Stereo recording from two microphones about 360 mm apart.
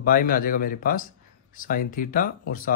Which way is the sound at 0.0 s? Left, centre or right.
Left.